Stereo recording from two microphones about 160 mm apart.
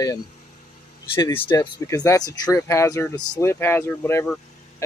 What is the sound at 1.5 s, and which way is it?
Speech, 25° left (ahead or behind).